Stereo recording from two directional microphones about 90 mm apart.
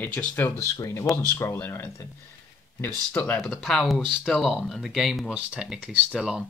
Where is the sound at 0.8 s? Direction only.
35° left (ahead or behind); by 3.4 s 20° left (ahead or behind).